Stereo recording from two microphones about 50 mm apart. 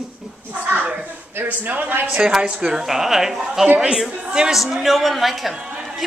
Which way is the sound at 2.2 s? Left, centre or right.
Centre.